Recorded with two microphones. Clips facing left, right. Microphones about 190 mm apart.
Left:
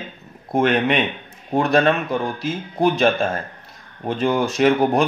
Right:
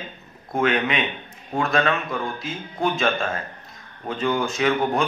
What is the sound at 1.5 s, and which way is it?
Speech, 35° left (ahead or behind).